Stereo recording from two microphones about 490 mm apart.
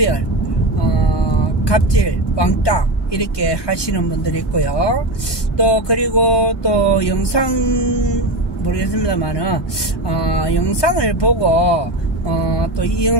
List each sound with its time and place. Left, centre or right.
1.0 s speech: left
5.6 s mantra: left